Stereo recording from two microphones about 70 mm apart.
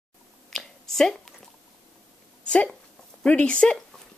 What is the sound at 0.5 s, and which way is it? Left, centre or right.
Squish, centre.